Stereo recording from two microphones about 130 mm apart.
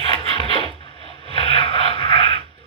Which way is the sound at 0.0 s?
45° left (ahead or behind).